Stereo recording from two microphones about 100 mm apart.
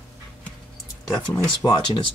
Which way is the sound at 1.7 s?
50° left (ahead or behind).